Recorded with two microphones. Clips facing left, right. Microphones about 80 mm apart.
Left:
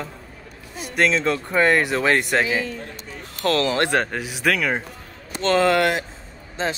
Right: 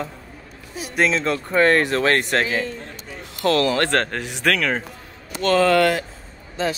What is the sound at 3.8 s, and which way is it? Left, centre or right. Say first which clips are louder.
Speech: even; centre.